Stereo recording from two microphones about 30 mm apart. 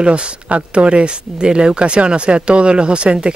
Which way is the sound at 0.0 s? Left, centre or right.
Right.